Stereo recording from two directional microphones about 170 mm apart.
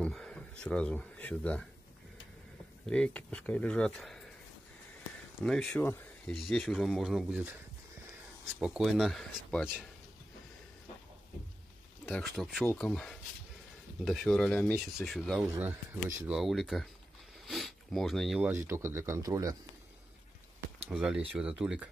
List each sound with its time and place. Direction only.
0.0 s speech: 5° left (ahead or behind)
2.9 s speech: 5° left (ahead or behind)
5.4 s speech: 5° left (ahead or behind)
8.5 s speech: 5° right (ahead or behind)
12.1 s speech: centre (ahead or behind)
15.5 s speech: 15° right (ahead or behind)
16.3 s speech: centre (ahead or behind)
18.5 s speech: 15° right (ahead or behind)
20.9 s speech: 5° right (ahead or behind)